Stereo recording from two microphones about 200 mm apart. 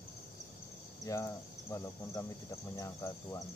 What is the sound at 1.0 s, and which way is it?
Speech, 15° left (ahead or behind).